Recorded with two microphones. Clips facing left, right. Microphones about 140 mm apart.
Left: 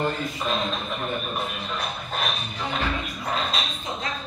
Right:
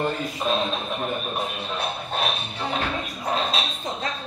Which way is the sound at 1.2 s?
35° right (ahead or behind).